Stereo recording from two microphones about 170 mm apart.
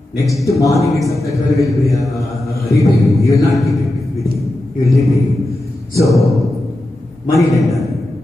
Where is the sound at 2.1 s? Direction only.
20° left (ahead or behind).